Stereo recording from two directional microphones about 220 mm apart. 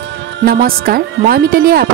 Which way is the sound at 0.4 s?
45° right (ahead or behind).